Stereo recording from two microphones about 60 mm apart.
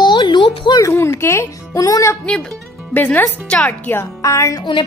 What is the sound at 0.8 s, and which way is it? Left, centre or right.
Speech, left.